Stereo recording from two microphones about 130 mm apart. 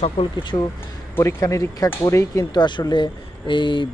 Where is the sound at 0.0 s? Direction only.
40° left (ahead or behind).